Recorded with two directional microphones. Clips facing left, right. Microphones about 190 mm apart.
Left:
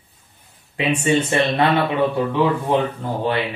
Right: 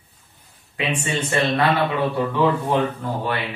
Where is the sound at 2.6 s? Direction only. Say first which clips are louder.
Left 1 dB; 25° left (ahead or behind).